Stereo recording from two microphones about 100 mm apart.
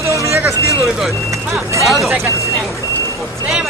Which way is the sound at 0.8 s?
Centre (ahead or behind).